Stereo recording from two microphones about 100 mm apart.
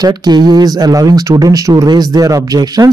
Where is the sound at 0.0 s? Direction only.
45° right (ahead or behind).